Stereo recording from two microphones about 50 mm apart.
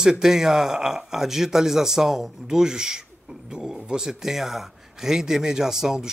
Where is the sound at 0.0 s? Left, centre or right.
Centre.